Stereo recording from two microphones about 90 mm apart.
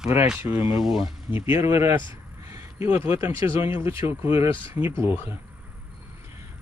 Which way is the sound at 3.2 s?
25° right (ahead or behind).